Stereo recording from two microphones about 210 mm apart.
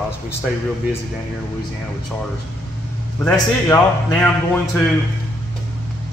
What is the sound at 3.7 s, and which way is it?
Speech, 15° left (ahead or behind).